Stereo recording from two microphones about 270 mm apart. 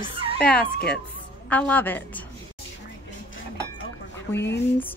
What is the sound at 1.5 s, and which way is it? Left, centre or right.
Speech, centre.